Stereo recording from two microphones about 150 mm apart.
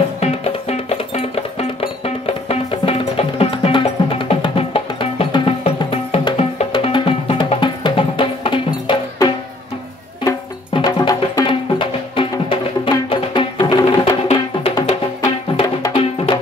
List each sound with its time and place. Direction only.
0.2 s music: 45° left (ahead or behind); by 13.8 s 25° left (ahead or behind)
14.2 s music: 40° left (ahead or behind)